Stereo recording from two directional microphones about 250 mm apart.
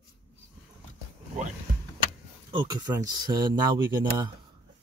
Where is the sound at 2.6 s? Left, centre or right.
Centre.